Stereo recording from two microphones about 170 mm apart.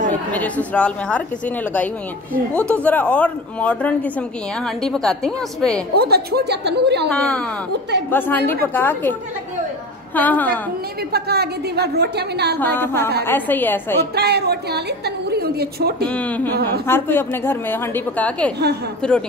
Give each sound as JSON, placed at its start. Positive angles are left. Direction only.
{"t": 0.3, "sound": "a woman's voice", "side_deg": 10}
{"t": 5.9, "sound": "a woman's voice", "side_deg": -70}
{"t": 7.1, "sound": "a woman's voice", "side_deg": 5}
{"t": 10.1, "sound": "a woman's voice", "side_deg": 10}
{"t": 11.1, "sound": "a woman's voice", "side_deg": -70}
{"t": 12.5, "sound": "a woman's voice", "side_deg": 10}
{"t": 14.1, "sound": "a woman's voice", "side_deg": -70}
{"t": 16.1, "sound": "a woman's voice", "side_deg": 10}